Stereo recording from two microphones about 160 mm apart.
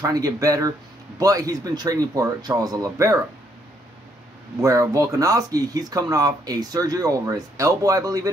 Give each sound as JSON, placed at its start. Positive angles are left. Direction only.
{"t": 0.0, "sound": "speech", "side_deg": -20}
{"t": 4.6, "sound": "speech", "side_deg": -20}